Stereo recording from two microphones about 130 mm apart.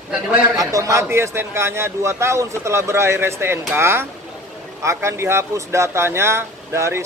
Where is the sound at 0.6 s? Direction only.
25° right (ahead or behind).